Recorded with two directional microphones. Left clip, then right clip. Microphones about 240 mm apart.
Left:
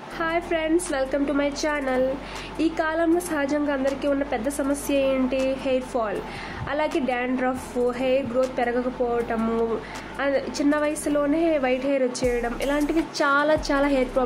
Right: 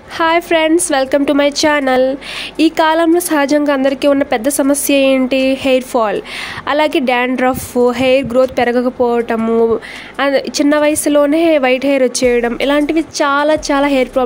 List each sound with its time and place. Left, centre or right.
0.2 s speech: right